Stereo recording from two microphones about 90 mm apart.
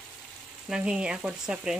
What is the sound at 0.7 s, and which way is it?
Stir, 10° right (ahead or behind).